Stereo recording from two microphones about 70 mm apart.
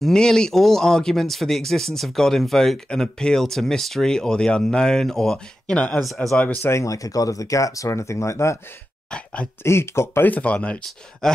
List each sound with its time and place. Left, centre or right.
0.0 s speech: centre
5.8 s speech: centre
6.7 s speech: left
9.1 s speech: centre
9.6 s speech: left
10.2 s speech: left
11.2 s speech: centre